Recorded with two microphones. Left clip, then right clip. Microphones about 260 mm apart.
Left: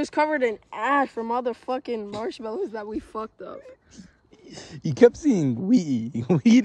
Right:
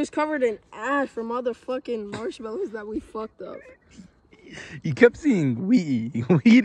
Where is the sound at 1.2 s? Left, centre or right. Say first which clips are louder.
Left 1 dB; left.